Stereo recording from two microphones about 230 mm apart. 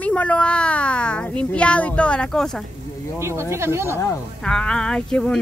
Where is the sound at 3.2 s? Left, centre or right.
Centre.